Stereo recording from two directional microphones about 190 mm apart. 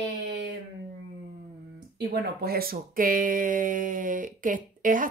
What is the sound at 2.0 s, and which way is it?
Speech, 55° right (ahead or behind).